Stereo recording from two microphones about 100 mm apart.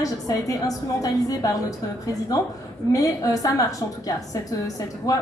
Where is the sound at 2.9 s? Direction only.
35° left (ahead or behind).